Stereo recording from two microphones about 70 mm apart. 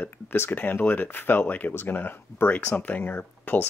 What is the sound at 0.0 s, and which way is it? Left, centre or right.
Speech, left.